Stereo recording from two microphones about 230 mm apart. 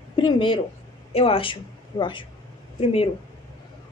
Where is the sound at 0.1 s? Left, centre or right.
Centre.